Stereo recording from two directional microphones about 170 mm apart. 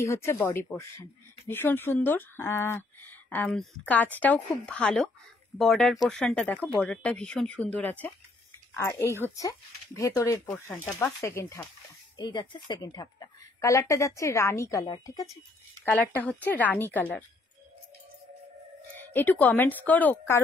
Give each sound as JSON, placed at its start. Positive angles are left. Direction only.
{"t": 0.0, "sound": "a woman's voice", "side_deg": 15}
{"t": 15.8, "sound": "speech", "side_deg": 10}
{"t": 18.9, "sound": "speech", "side_deg": 10}